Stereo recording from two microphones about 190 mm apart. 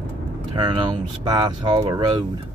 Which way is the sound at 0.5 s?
25° right (ahead or behind).